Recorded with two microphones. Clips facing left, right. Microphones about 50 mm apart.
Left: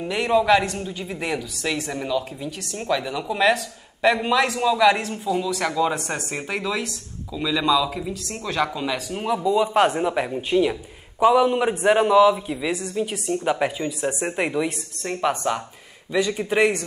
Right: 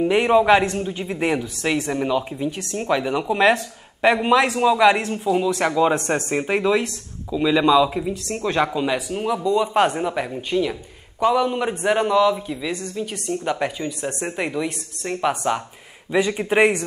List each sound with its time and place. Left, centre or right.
0.1 s a man's voice: right
2.0 s speech: right
4.2 s a man's voice: centre
5.9 s speech: centre
6.3 s a man's voice: right
8.5 s a man's voice: centre
9.1 s speech: centre
16.1 s speech: right